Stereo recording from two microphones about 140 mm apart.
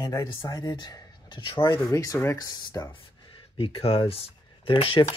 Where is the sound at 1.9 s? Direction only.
20° left (ahead or behind); by 5.2 s 40° left (ahead or behind).